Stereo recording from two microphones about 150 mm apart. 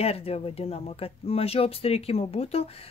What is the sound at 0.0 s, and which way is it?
Speech, 40° left (ahead or behind).